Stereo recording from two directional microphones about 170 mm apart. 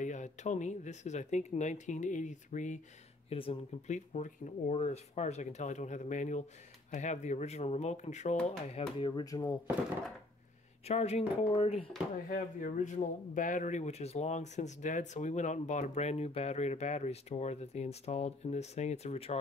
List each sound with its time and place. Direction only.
0.0 s speech: 45° left (ahead or behind)
3.3 s speech: 35° left (ahead or behind)
10.9 s speech: 40° left (ahead or behind)
12.3 s speech: 50° left (ahead or behind)